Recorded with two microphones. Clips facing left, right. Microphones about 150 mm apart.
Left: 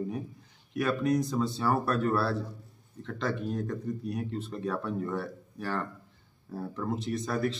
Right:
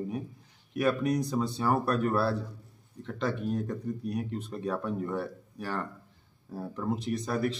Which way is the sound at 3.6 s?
15° right (ahead or behind).